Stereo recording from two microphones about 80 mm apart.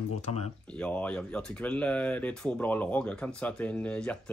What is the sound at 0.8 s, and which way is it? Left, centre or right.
Speech, centre.